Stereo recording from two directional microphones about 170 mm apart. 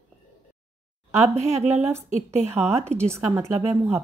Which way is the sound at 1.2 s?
40° right (ahead or behind).